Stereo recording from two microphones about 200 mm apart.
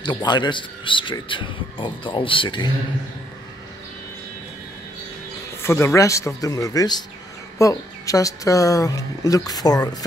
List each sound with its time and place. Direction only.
0.0 s a man's voice: 20° left (ahead or behind)
5.6 s speech: 10° left (ahead or behind)